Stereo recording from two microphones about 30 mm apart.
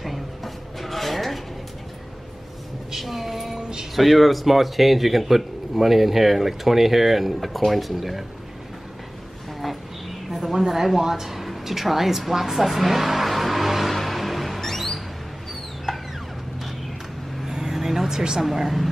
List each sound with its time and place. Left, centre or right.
0.0 s drawer open or close: centre
3.0 s a sound: centre
3.9 s speech: centre
10.4 s a woman's voice: centre
13.9 s music: centre
14.6 s music: centre
17.5 s vehicle: centre
18.4 s a woman's voice: centre